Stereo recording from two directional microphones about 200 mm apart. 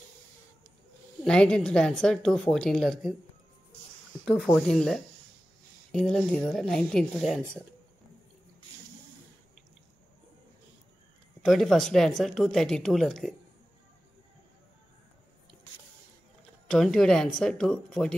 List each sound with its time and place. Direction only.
1.2 s a woman's voice: 5° left (ahead or behind)
4.6 s a woman's voice: centre (ahead or behind)
11.4 s a woman's voice: centre (ahead or behind)
16.6 s a woman's voice: centre (ahead or behind)